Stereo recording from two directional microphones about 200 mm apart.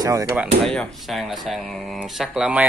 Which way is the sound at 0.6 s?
Centre (ahead or behind).